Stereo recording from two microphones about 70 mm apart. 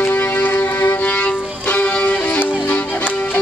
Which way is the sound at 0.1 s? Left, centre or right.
Left.